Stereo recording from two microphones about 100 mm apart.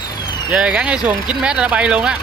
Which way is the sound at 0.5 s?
15° right (ahead or behind).